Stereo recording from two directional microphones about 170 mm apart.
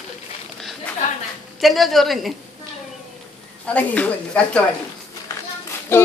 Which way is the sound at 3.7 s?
10° left (ahead or behind).